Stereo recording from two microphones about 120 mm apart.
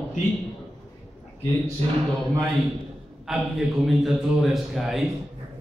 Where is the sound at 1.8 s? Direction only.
65° right (ahead or behind).